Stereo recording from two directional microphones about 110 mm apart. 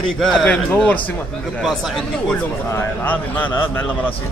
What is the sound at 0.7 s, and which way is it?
Speech, 15° left (ahead or behind).